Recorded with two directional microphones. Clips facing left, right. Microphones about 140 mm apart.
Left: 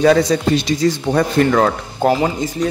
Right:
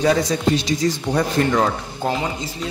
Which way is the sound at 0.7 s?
65° left (ahead or behind).